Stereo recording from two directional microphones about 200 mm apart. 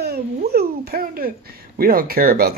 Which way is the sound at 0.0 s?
50° right (ahead or behind).